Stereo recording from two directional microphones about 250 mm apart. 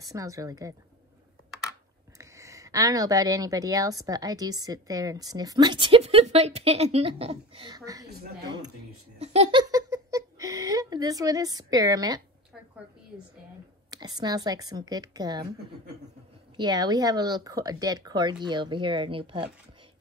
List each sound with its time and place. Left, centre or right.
0.0 s speech: centre
2.1 s speech: centre
8.1 s a woman's voice: right
8.5 s speech: centre
9.2 s giggle: right
13.8 s speech: centre
16.5 s speech: centre